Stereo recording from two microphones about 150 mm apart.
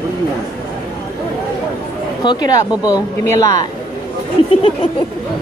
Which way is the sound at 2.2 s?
25° left (ahead or behind).